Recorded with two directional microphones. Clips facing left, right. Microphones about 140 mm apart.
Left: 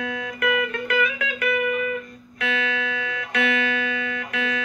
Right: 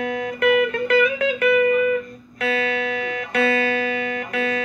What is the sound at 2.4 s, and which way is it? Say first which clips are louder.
Music: right 4 dB; 35° right (ahead or behind).